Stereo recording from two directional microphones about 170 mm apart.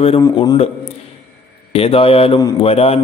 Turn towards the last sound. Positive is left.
turn(degrees=35)  # may be behind; listen again after turning